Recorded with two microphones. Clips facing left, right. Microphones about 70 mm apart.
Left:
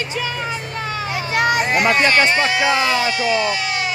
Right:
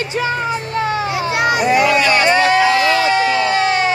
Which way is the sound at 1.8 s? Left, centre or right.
Left.